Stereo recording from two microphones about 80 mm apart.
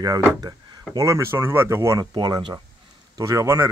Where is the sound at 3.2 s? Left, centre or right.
Right.